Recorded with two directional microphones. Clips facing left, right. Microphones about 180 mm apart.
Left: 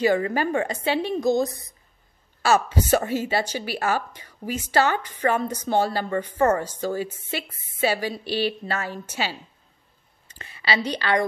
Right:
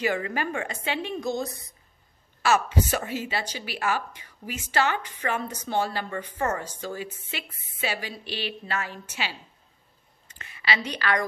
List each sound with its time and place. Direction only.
0.0 s a woman's voice: 35° left (ahead or behind)